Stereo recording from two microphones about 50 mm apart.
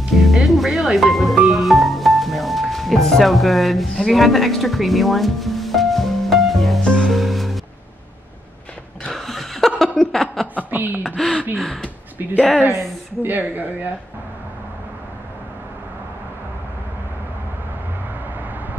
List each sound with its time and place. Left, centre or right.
0.1 s music: centre
6.8 s music: centre
7.1 s music: centre
9.1 s laughter: centre
10.6 s speech: right
11.1 s speech: centre
13.2 s speech: right